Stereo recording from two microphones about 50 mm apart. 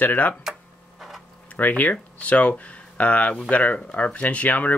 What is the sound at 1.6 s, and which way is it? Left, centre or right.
Speech, left.